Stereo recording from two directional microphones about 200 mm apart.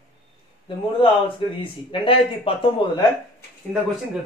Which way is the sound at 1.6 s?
25° left (ahead or behind).